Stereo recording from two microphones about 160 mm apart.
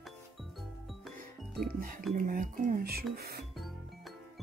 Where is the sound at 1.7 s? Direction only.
60° right (ahead or behind).